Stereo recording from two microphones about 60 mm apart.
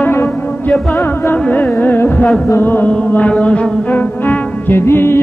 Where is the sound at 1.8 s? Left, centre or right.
Left.